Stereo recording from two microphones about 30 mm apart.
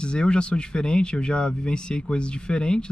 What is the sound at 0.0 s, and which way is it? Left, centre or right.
Speech, left.